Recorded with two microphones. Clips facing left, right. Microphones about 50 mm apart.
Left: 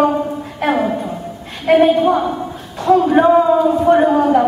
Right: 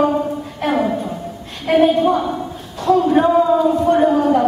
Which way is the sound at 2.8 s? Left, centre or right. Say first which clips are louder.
Left 2 dB; centre.